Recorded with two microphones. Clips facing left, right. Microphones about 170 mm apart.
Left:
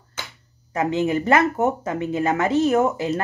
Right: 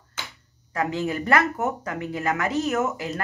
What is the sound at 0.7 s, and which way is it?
Speech, 20° left (ahead or behind).